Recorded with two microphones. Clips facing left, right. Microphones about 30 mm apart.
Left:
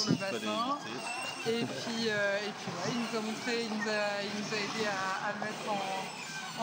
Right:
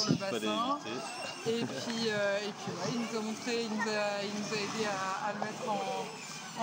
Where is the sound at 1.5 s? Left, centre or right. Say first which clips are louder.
Even; left.